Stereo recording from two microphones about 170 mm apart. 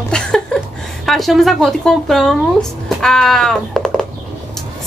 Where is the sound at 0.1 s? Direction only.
5° left (ahead or behind).